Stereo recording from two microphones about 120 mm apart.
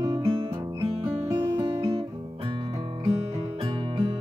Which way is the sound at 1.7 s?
50° right (ahead or behind).